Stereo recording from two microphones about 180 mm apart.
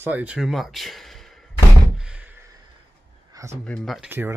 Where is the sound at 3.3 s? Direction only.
15° right (ahead or behind).